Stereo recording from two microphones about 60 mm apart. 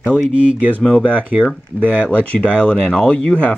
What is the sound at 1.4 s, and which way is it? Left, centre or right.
Speech, centre.